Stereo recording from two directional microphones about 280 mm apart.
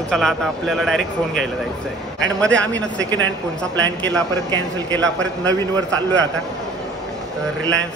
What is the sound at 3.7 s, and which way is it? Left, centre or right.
Speech, right.